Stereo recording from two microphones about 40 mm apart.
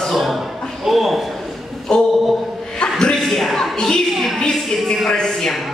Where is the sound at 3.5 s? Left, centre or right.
Centre.